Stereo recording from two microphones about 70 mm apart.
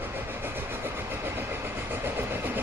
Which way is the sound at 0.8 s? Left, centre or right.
Right.